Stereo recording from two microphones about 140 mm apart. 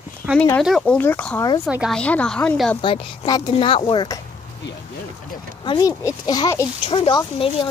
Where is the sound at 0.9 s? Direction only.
10° left (ahead or behind).